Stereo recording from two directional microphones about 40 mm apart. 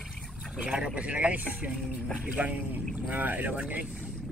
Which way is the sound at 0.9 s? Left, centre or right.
Right.